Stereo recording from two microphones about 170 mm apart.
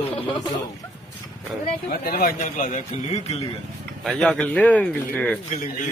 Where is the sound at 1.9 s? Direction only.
60° left (ahead or behind).